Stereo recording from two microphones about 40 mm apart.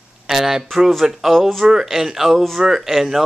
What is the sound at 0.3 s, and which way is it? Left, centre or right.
Speech, centre.